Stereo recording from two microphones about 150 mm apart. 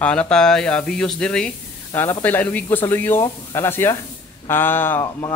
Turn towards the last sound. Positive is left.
turn(degrees=15)  # may be behind; listen again after turning